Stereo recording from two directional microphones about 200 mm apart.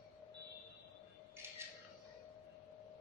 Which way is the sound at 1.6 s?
10° right (ahead or behind).